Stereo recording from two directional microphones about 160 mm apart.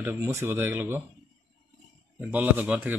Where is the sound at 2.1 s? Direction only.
10° right (ahead or behind).